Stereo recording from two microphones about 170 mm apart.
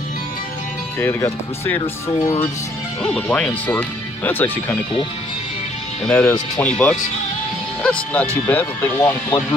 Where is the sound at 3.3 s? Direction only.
10° left (ahead or behind).